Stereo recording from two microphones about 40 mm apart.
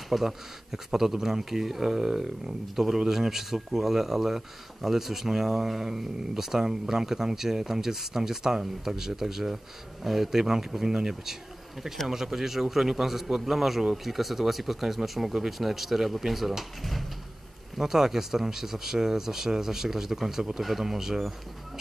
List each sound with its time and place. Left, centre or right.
0.1 s speech: centre